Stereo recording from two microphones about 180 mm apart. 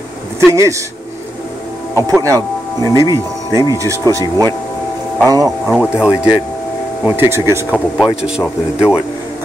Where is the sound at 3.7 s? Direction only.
15° right (ahead or behind).